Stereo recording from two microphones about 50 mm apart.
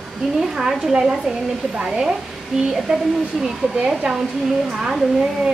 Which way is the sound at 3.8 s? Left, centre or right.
Centre.